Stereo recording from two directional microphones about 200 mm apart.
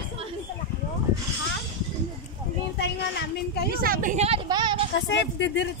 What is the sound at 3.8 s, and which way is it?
Speech, 45° right (ahead or behind).